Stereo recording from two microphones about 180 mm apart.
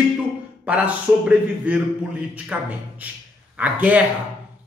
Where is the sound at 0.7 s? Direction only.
5° right (ahead or behind).